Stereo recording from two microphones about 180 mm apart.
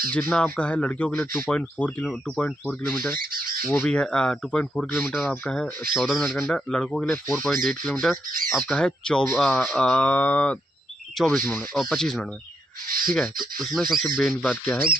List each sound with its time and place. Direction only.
0.1 s speech: 5° left (ahead or behind)
3.2 s squawk: 55° right (ahead or behind)
3.6 s speech: 10° left (ahead or behind)
12.8 s a sound: 50° right (ahead or behind)
13.1 s speech: centre (ahead or behind)